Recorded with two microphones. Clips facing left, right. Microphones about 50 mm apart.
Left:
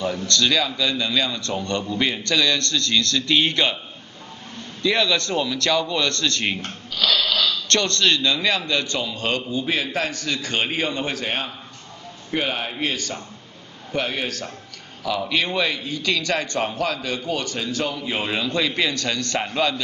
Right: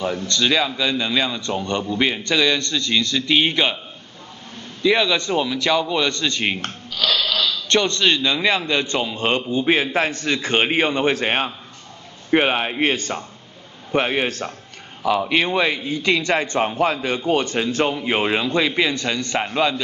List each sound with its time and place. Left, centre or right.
0.0 s a man's voice: right
4.8 s a man's voice: centre
7.6 s a man's voice: centre